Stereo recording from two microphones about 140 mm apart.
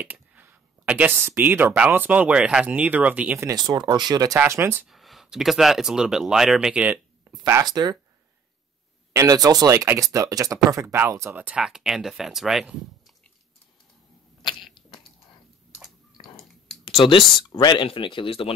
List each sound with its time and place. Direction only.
0.0 s speech: 10° right (ahead or behind)
3.4 s speech: 30° right (ahead or behind)
4.4 s speech: 15° right (ahead or behind)
4.8 s speech: centre (ahead or behind); by 7.6 s 20° right (ahead or behind)
7.6 s speech: 30° right (ahead or behind)
9.1 s speech: 25° right (ahead or behind); by 13.1 s centre (ahead or behind)
16.8 s speech: 40° left (ahead or behind)